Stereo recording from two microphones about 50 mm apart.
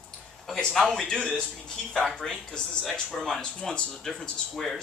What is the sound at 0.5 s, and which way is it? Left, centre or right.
A man's voice, centre.